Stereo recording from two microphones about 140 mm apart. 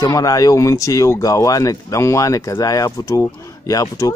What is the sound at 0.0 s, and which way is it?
Speech, 25° left (ahead or behind).